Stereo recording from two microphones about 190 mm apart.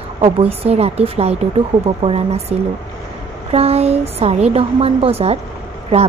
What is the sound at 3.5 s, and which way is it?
A woman's voice, 30° right (ahead or behind).